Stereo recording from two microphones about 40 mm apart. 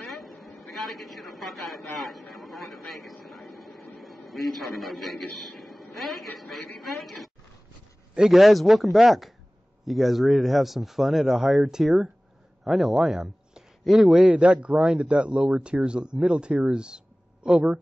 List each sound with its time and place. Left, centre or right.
0.0 s a man's voice: centre
2.9 s a sound: centre
5.6 s a man's voice: centre
8.3 s speech: centre
14.2 s speech: right